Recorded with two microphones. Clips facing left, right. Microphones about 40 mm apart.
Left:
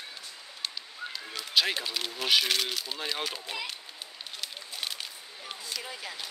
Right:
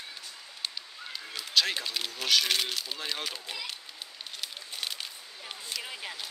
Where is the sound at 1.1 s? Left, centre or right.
Centre.